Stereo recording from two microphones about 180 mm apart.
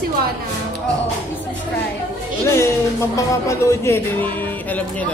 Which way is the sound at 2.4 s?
15° left (ahead or behind).